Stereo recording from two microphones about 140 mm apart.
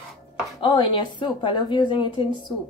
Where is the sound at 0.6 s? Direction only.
35° left (ahead or behind).